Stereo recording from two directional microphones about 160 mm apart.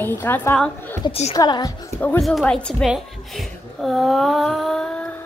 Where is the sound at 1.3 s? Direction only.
25° left (ahead or behind).